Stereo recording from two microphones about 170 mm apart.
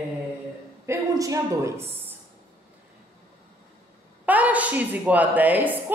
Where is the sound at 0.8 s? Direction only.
20° right (ahead or behind).